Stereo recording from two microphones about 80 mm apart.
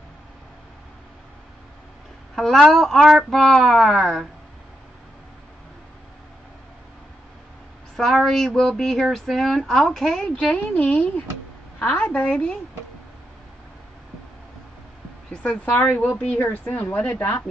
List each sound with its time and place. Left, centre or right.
2.3 s speech: centre
7.9 s a woman's voice: centre
15.3 s a woman's voice: centre